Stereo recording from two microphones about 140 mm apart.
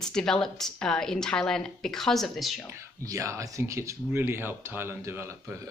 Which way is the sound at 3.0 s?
20° right (ahead or behind).